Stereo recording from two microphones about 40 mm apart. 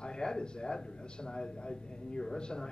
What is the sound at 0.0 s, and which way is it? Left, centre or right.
Speech, centre.